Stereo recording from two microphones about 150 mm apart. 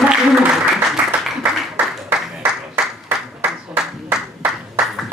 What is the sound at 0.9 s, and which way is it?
Applause, 5° right (ahead or behind).